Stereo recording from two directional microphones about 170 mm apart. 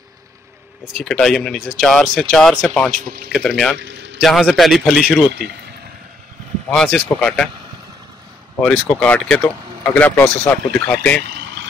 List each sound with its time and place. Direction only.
0.9 s speech: 5° left (ahead or behind)
3.7 s a sound: 90° right
4.2 s speech: centre (ahead or behind)
6.7 s speech: 5° left (ahead or behind)
8.6 s speech: 5° left (ahead or behind)